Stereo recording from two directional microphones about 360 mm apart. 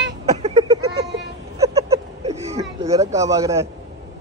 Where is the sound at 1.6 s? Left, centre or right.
Centre.